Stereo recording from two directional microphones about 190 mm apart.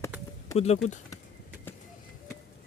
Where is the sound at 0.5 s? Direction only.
35° left (ahead or behind).